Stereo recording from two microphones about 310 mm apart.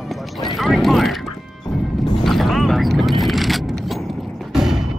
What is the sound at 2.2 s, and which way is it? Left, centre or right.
Vehicle, centre.